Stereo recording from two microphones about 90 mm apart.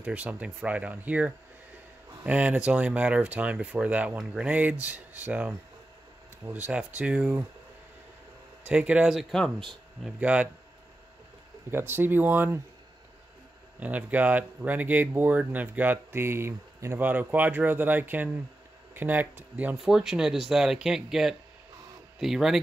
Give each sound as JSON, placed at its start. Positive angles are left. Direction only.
{"t": 0.0, "sound": "speech", "side_deg": -15}
{"t": 8.6, "sound": "speech", "side_deg": -15}
{"t": 10.2, "sound": "speech", "side_deg": -15}
{"t": 11.7, "sound": "speech", "side_deg": -25}
{"t": 13.7, "sound": "speech", "side_deg": -15}
{"t": 19.8, "sound": "speech", "side_deg": -5}